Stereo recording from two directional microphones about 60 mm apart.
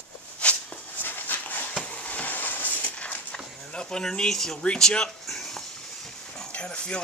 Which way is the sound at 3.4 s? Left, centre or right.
Centre.